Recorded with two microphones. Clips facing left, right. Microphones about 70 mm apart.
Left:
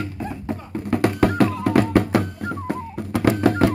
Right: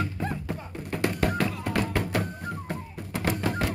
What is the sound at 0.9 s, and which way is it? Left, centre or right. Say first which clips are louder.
Music: left 8 dB; left.